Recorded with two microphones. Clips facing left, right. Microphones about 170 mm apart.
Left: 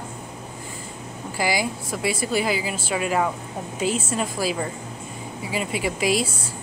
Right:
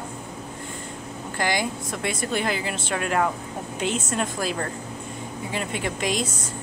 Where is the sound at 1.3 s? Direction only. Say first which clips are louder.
Left 1 dB; 5° left (ahead or behind).